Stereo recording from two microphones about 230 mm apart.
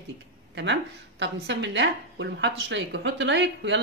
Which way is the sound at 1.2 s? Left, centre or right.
Right.